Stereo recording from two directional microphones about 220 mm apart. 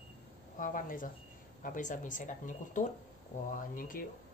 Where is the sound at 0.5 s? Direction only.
35° left (ahead or behind).